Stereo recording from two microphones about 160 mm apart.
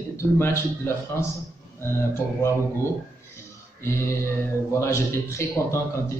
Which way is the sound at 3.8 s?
15° left (ahead or behind).